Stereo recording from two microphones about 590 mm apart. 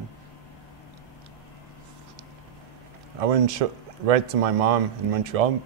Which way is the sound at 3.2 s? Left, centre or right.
Right.